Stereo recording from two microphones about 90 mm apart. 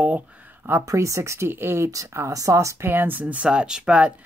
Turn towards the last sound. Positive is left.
turn(degrees=-10)  # may be behind; listen again after turning